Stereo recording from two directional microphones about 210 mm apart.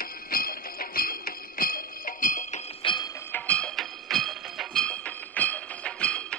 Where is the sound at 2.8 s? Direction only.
20° left (ahead or behind).